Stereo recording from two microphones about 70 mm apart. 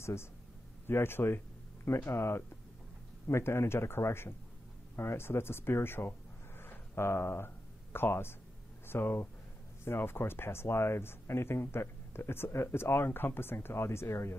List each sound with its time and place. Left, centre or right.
0.0 s a man's voice: left
6.6 s a sound: left
8.8 s speech: left